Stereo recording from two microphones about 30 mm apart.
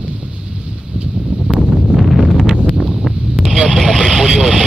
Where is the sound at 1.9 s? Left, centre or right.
Centre.